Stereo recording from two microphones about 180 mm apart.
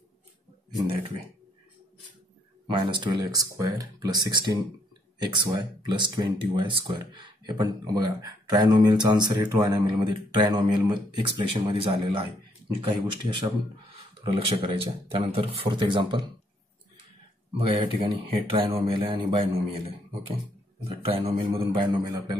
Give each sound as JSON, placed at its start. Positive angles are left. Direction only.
{"t": 2.6, "sound": "speech", "side_deg": -25}
{"t": 17.6, "sound": "speech", "side_deg": -30}
{"t": 20.9, "sound": "speech", "side_deg": -30}